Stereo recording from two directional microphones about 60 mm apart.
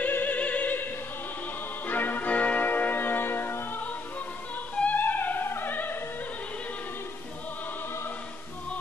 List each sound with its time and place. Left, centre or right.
0.0 s opera: left
1.9 s music: left